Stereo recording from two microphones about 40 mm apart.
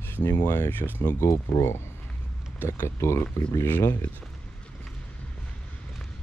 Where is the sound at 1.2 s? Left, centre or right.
Left.